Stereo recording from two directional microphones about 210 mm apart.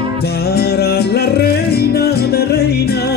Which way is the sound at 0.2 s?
50° left (ahead or behind).